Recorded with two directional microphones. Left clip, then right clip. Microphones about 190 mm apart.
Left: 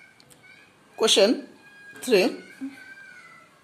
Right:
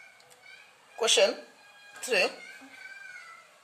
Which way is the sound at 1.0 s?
25° left (ahead or behind).